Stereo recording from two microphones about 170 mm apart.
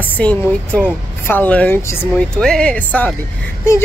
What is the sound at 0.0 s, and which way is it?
Speech, 10° left (ahead or behind).